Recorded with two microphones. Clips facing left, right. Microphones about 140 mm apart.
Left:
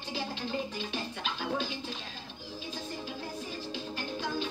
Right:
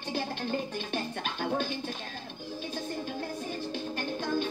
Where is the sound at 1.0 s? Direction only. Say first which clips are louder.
Right 5 dB; 50° right (ahead or behind).